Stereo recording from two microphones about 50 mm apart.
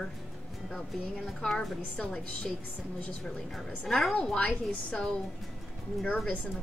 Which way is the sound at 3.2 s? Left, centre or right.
Centre.